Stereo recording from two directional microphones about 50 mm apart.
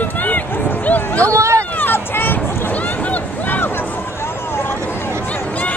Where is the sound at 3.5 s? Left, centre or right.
Left.